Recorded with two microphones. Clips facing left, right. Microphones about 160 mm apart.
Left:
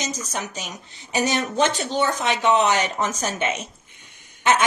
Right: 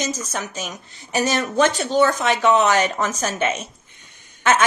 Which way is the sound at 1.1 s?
20° left (ahead or behind).